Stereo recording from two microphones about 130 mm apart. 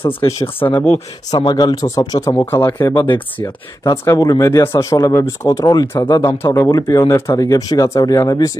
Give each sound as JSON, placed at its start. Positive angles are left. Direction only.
{"t": 0.0, "sound": "speech", "side_deg": 45}
{"t": 2.9, "sound": "speech", "side_deg": 35}
{"t": 3.3, "sound": "speech", "side_deg": 15}
{"t": 4.0, "sound": "speech", "side_deg": 25}
{"t": 6.4, "sound": "speech", "side_deg": 20}